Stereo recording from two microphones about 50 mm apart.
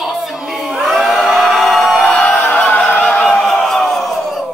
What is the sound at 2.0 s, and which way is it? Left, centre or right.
Music, left.